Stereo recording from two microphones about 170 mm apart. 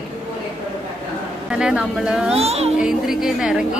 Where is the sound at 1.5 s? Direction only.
5° right (ahead or behind).